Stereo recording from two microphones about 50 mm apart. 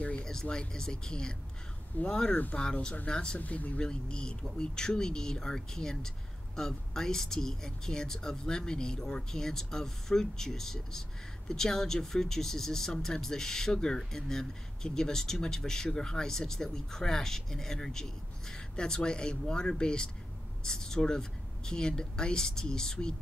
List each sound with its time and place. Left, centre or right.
0.2 s speech: centre
3.3 s speech: left